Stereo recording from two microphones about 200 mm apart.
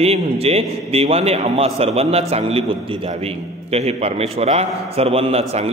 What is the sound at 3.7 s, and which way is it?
A man's voice, 30° right (ahead or behind).